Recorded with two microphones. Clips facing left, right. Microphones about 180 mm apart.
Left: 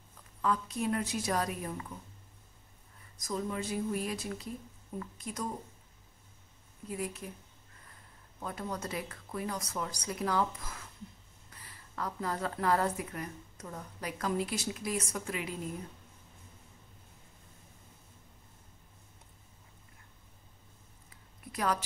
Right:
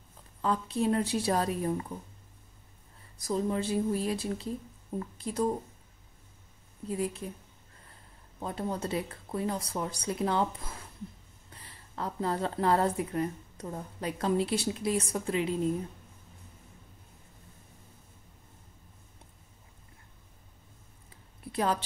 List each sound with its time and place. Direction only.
0.4 s speech: 30° right (ahead or behind)
3.2 s a woman's voice: 30° right (ahead or behind)
6.9 s speech: 30° right (ahead or behind)
8.4 s speech: 30° right (ahead or behind)
21.5 s a sound: 30° right (ahead or behind)